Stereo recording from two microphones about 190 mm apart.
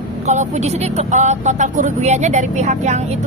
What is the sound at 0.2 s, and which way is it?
Speech, 40° right (ahead or behind).